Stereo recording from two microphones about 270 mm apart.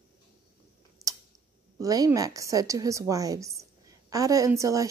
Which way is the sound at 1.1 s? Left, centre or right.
Centre.